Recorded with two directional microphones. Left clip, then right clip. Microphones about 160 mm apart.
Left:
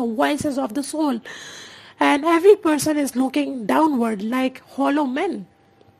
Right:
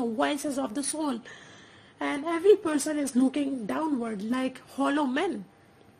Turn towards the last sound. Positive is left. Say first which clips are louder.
# left 6 dB
turn(degrees=20)  # may be behind; listen again after turning